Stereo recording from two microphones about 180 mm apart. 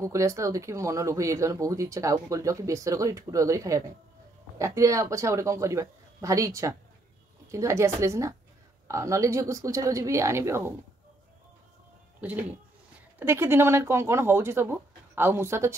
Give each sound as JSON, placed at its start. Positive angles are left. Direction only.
{"t": 0.0, "sound": "speech", "side_deg": -15}
{"t": 12.2, "sound": "speech", "side_deg": -10}